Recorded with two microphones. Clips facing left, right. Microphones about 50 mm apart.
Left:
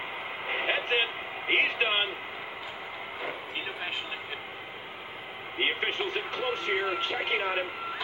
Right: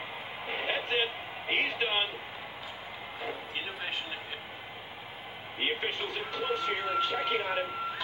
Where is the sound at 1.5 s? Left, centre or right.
Left.